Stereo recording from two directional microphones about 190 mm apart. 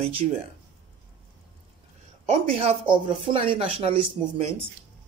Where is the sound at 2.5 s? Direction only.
30° right (ahead or behind).